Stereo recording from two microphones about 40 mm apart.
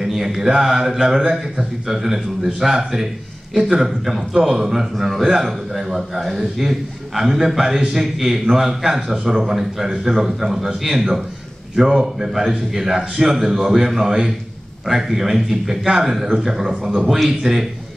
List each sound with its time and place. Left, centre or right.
0.0 s a man's voice: centre